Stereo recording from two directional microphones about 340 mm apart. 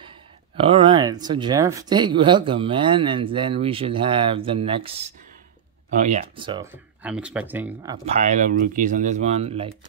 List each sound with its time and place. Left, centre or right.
0.6 s speech: centre